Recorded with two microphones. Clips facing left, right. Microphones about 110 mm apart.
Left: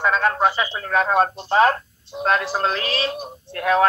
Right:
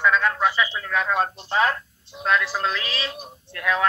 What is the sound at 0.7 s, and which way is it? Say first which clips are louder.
A man's voice: left 5 dB; 40° left (ahead or behind).